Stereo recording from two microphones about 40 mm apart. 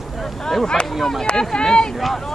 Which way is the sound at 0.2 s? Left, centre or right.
Centre.